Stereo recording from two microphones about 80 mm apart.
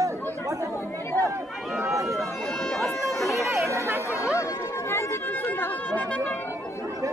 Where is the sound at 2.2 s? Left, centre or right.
Centre.